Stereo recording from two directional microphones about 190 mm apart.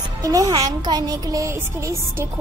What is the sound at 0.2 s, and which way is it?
Speech, 20° right (ahead or behind).